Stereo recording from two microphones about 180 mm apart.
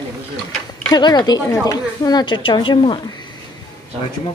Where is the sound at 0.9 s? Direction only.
25° left (ahead or behind).